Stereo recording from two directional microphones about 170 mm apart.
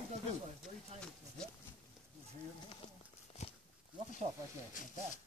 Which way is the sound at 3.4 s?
40° left (ahead or behind).